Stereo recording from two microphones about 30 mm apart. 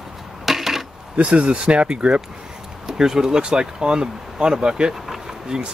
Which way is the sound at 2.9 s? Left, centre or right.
Centre.